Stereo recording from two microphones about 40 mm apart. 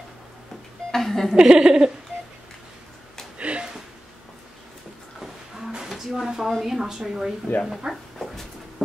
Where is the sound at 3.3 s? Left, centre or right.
Right.